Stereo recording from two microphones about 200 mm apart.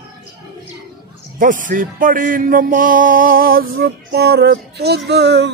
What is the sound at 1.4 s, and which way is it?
Music, 40° right (ahead or behind).